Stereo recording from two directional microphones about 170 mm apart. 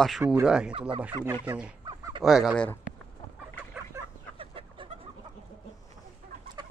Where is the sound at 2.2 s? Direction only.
5° right (ahead or behind).